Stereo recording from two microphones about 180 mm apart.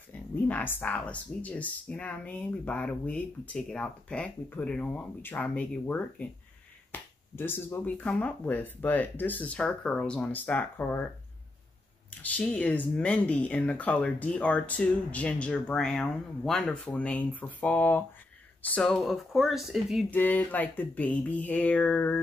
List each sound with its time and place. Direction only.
0.1 s speech: 10° left (ahead or behind)
12.1 s speech: 10° left (ahead or behind)
20.1 s speech: 10° left (ahead or behind)